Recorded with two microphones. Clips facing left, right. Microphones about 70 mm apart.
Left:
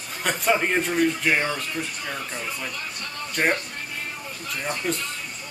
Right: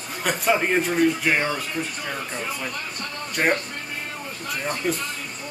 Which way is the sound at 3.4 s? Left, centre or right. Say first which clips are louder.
Right 1 dB; centre.